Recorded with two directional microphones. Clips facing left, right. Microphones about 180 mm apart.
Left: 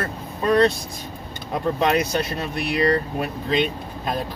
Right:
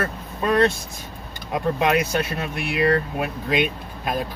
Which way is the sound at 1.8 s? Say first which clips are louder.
Left 1 dB; 30° left (ahead or behind).